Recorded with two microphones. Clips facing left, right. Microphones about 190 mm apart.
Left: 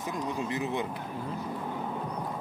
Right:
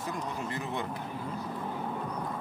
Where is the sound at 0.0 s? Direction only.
15° left (ahead or behind).